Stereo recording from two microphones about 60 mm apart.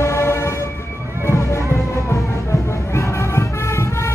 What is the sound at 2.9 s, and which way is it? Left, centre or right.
Music, left.